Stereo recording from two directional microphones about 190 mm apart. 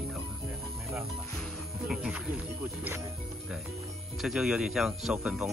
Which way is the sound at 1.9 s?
5° right (ahead or behind).